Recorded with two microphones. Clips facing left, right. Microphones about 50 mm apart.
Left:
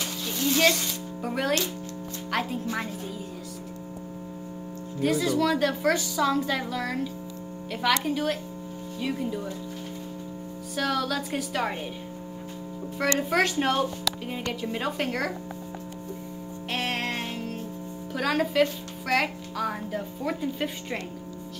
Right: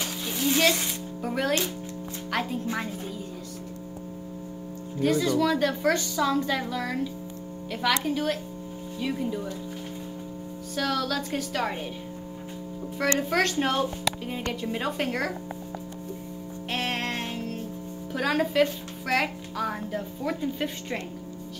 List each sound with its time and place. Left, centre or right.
0.3 s a sound: centre
1.2 s speech: centre
5.0 s speech: centre
10.8 s a woman's voice: centre
13.2 s speech: centre
16.7 s music: centre
18.1 s speech: centre